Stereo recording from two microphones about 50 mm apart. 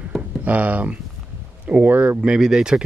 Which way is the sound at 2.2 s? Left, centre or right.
Centre.